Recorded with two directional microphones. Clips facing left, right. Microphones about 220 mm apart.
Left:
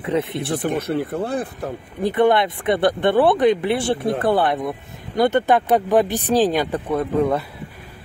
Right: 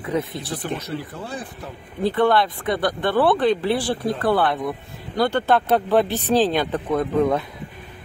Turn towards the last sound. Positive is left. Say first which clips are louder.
# even
turn(degrees=10)  # may be behind; listen again after turning